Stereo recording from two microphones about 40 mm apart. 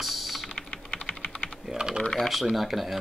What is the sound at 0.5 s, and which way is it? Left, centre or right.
Typing, left.